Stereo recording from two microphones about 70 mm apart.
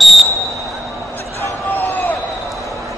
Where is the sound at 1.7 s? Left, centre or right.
Left.